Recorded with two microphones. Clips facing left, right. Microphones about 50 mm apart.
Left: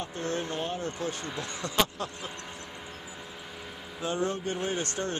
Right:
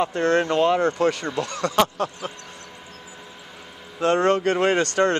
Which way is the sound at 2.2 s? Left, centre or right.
Right.